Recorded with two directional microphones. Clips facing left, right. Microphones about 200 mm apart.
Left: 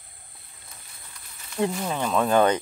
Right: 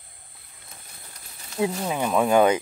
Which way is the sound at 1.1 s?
35° right (ahead or behind).